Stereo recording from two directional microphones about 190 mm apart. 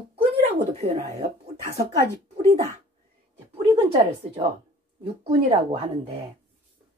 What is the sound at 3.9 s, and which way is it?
A woman's voice, 30° right (ahead or behind).